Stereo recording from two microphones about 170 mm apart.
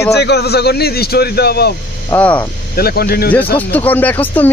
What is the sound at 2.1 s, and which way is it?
Speech, 10° left (ahead or behind).